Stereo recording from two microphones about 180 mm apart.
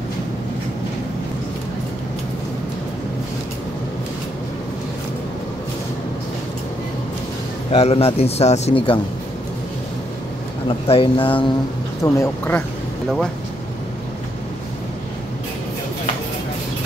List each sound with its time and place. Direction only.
7.7 s a man's voice: 35° left (ahead or behind)
10.9 s speech: 30° left (ahead or behind)
12.0 s speech: 15° left (ahead or behind)